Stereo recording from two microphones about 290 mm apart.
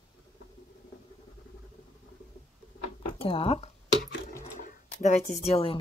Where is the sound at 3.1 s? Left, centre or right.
Centre.